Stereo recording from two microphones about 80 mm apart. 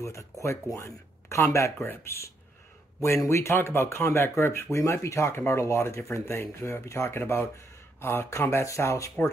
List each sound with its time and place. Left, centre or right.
0.0 s speech: left